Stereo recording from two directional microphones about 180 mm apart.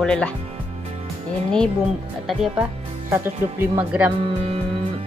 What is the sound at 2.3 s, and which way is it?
Speech, centre (ahead or behind).